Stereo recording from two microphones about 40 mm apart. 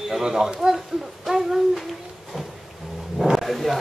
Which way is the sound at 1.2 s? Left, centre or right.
Centre.